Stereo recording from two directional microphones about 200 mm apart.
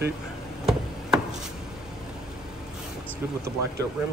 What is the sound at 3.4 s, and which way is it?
Speech, 15° right (ahead or behind).